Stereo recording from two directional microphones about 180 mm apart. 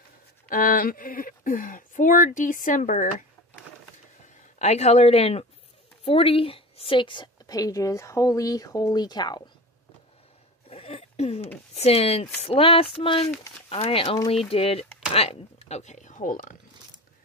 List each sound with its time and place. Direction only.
0.5 s speech: 50° left (ahead or behind)
4.6 s a woman's voice: 40° left (ahead or behind)
10.7 s a sound: 35° left (ahead or behind)
11.7 s speech: 35° left (ahead or behind)